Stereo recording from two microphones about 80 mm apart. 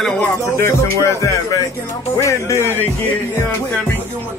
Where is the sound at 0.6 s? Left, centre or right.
Left.